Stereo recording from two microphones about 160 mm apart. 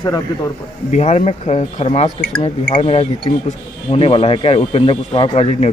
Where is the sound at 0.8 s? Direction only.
45° left (ahead or behind).